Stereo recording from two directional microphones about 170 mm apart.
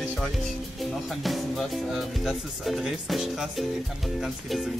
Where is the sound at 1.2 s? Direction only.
Centre (ahead or behind).